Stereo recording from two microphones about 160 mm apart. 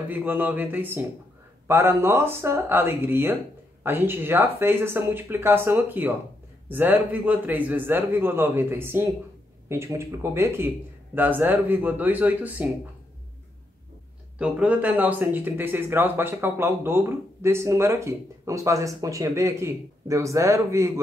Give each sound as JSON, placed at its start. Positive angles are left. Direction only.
{"t": 0.1, "sound": "speech", "side_deg": -10}
{"t": 14.4, "sound": "speech", "side_deg": -10}